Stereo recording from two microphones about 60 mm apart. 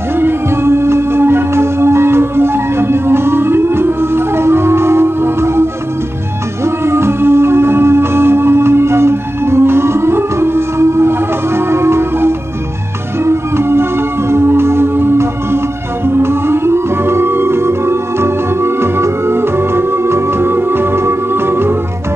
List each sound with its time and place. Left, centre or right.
0.2 s music: right